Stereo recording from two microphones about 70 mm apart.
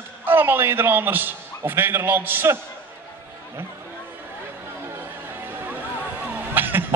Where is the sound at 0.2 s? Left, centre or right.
Right.